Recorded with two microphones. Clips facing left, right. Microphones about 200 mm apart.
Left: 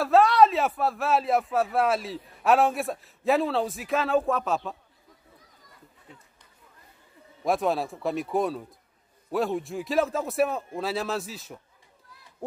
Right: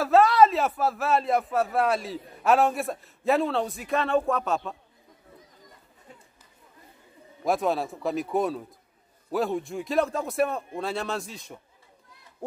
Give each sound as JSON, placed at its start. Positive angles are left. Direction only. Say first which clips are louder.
{"t": 0.0, "sound": "a man's voice", "louder": "even", "side_deg": 0}
{"t": 6.1, "sound": "run", "louder": "right 1 dB", "side_deg": -40}
{"t": 7.4, "sound": "a man's voice", "louder": "even", "side_deg": 0}